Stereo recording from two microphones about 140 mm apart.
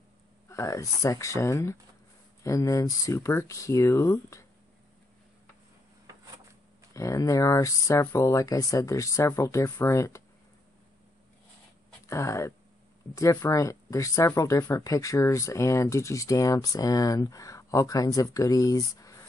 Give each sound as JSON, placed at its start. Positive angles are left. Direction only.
{"t": 0.5, "sound": "speech", "side_deg": 20}
{"t": 6.9, "sound": "speech", "side_deg": 20}
{"t": 12.1, "sound": "speech", "side_deg": 20}